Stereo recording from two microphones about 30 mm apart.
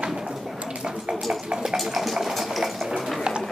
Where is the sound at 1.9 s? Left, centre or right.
Centre.